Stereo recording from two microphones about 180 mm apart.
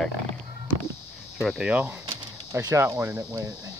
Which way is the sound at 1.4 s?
Centre (ahead or behind).